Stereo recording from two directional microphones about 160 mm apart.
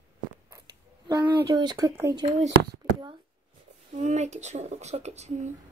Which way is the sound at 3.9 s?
45° right (ahead or behind).